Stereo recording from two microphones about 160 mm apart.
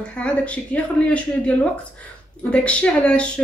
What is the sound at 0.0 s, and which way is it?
A woman's voice, 10° left (ahead or behind).